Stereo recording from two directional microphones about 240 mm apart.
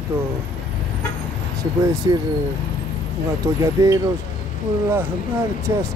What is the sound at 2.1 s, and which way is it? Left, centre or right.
Speech, centre.